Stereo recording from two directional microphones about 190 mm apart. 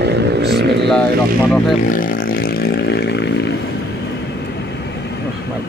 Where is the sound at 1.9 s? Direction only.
45° left (ahead or behind); by 3.5 s 60° left (ahead or behind).